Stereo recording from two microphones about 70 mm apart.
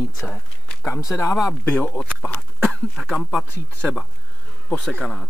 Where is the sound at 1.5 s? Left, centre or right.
Left.